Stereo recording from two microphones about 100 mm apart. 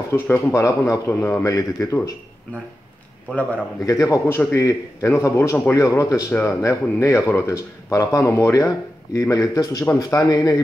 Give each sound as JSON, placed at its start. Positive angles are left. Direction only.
{"t": 0.1, "sound": "speech", "side_deg": 30}
{"t": 3.8, "sound": "speech", "side_deg": 35}